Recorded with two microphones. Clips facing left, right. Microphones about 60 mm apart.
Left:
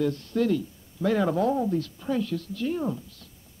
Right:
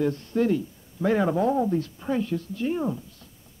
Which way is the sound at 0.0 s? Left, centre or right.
Right.